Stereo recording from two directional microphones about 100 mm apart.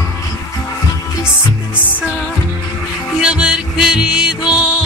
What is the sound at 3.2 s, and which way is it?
Music, 10° right (ahead or behind).